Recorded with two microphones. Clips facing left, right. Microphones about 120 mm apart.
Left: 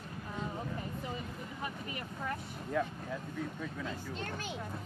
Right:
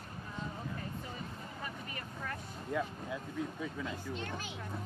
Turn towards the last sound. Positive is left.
turn(degrees=-5)  # may be behind; listen again after turning